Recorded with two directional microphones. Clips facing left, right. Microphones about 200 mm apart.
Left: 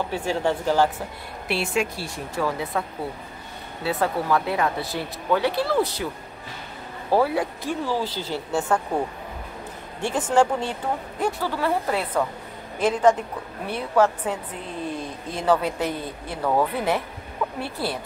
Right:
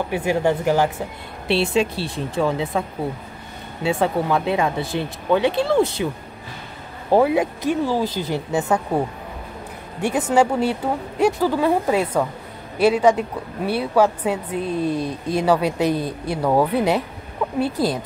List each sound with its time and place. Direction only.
0.1 s a woman's voice: 15° right (ahead or behind)
1.5 s speech: 25° right (ahead or behind)
3.8 s speech: 20° right (ahead or behind)
7.1 s speech: 20° right (ahead or behind)
8.6 s a woman's voice: 5° right (ahead or behind)
10.3 s a woman's voice: 10° right (ahead or behind)